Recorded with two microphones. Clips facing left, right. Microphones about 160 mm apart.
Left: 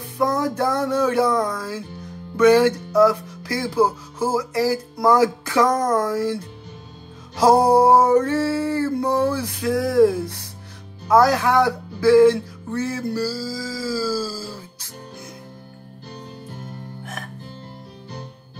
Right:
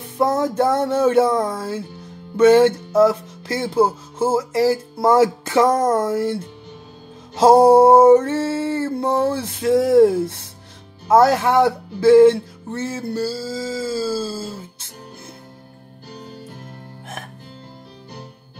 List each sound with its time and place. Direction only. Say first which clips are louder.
0.2 s speech: right 3 dB; 25° right (ahead or behind)
7.3 s speech: right 4 dB; 25° right (ahead or behind)